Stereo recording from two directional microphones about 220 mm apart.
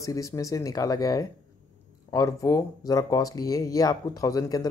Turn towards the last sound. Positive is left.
turn(degrees=15)  # may be behind; listen again after turning